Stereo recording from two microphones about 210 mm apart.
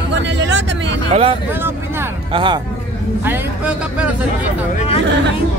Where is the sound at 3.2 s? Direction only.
5° right (ahead or behind).